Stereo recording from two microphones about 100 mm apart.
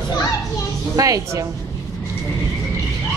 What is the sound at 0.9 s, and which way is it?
Speech, 35° right (ahead or behind).